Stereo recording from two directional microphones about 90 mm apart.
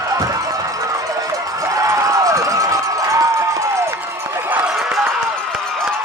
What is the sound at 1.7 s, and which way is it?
Run, 40° right (ahead or behind).